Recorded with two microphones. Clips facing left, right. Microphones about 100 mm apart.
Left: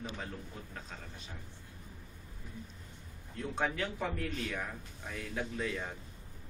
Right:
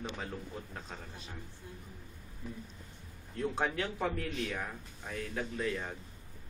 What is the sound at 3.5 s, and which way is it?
Speech, 5° right (ahead or behind).